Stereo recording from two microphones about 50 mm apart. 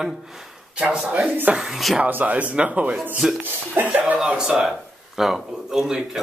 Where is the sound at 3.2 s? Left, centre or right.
Centre.